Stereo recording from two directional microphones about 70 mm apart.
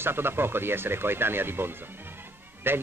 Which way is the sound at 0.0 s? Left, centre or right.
Right.